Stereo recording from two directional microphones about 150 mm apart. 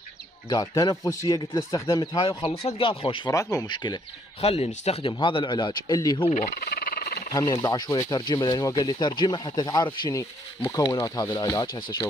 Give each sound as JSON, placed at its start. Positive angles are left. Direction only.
{"t": 0.5, "sound": "speech", "side_deg": 25}
{"t": 3.3, "sound": "speech", "side_deg": 20}
{"t": 6.3, "sound": "a sound", "side_deg": 65}
{"t": 7.6, "sound": "speech", "side_deg": 25}